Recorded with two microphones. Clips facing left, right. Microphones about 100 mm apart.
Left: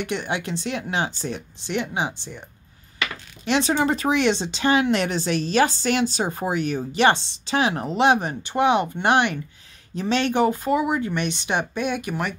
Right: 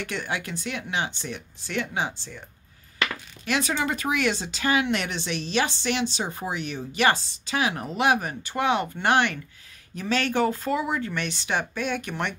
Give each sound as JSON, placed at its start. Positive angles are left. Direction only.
{"t": 0.0, "sound": "speech", "side_deg": 20}
{"t": 1.6, "sound": "speech", "side_deg": 20}
{"t": 3.4, "sound": "speech", "side_deg": 25}